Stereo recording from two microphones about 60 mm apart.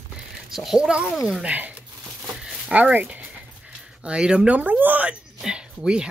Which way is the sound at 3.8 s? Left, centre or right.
Centre.